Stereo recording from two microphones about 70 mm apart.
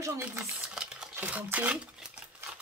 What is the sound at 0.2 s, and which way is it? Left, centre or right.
Speech, right.